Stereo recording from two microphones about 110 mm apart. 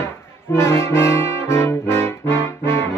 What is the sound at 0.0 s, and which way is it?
Brass instrument, 25° left (ahead or behind).